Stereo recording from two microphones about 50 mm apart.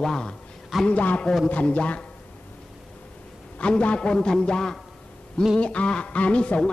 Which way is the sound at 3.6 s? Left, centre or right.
Left.